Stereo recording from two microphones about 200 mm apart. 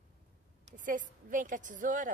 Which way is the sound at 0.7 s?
40° right (ahead or behind).